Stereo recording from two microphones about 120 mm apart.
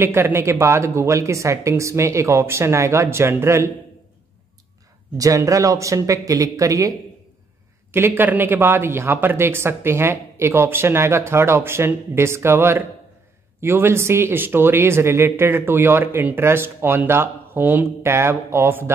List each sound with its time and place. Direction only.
0.0 s speech: 20° right (ahead or behind)
5.1 s speech: 30° right (ahead or behind)
7.9 s speech: 20° right (ahead or behind)